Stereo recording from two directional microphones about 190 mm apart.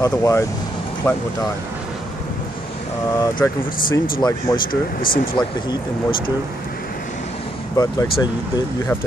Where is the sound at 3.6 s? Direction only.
45° left (ahead or behind).